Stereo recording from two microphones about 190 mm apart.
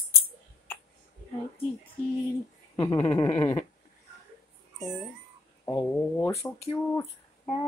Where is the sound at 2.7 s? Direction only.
20° left (ahead or behind).